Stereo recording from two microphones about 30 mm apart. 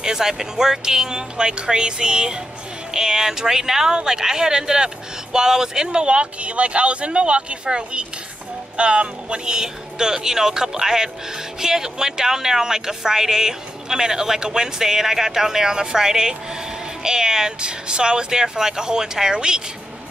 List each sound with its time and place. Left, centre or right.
0.0 s speech: centre
5.9 s speech: right
9.6 s speech: right